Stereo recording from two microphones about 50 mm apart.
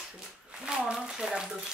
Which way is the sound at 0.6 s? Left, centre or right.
Right.